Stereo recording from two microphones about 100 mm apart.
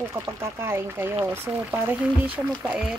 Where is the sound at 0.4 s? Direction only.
25° right (ahead or behind).